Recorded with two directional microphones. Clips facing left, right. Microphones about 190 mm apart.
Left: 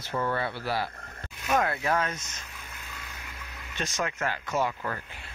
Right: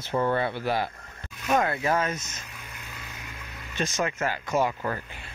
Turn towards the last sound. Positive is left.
turn(degrees=-20)  # may be behind; listen again after turning